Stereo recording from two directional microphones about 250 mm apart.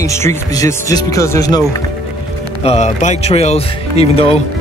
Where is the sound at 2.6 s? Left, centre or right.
Left.